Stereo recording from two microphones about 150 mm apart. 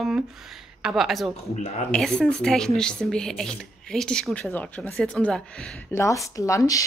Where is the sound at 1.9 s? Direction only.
5° left (ahead or behind).